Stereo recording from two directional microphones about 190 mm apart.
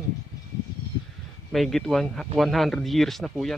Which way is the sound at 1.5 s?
Centre (ahead or behind).